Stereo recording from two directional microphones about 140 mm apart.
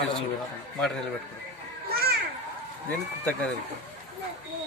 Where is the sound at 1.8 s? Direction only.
90° right.